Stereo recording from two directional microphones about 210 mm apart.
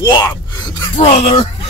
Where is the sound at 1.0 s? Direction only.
30° left (ahead or behind).